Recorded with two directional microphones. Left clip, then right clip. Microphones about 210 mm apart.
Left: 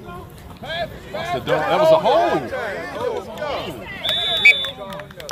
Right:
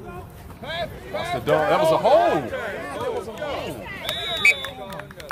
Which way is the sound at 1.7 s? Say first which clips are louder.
Left 4 dB; 55° right (ahead or behind).